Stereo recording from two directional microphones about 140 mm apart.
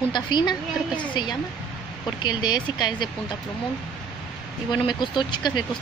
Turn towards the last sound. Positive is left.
turn(degrees=35)  # may be behind; listen again after turning